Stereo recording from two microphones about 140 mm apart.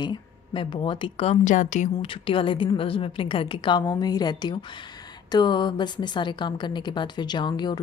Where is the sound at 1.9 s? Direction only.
40° left (ahead or behind).